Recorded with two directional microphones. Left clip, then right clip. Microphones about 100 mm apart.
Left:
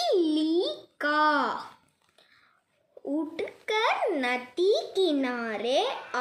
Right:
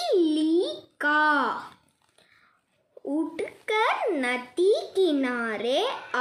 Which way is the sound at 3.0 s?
20° right (ahead or behind).